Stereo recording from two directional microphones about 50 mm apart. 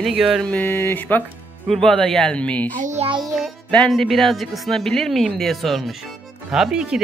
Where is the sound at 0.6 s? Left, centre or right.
Left.